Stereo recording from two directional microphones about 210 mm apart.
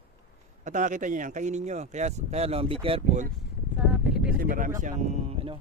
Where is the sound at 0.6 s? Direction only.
35° right (ahead or behind).